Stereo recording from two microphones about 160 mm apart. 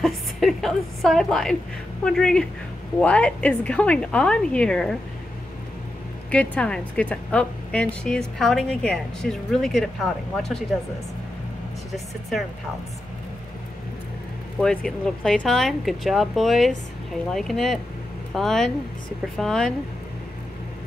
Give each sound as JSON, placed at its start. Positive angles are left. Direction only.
{"t": 0.0, "sound": "a woman's voice", "side_deg": 0}
{"t": 6.3, "sound": "a woman's voice", "side_deg": 10}
{"t": 11.9, "sound": "a woman's voice", "side_deg": 0}
{"t": 14.6, "sound": "a woman's voice", "side_deg": 5}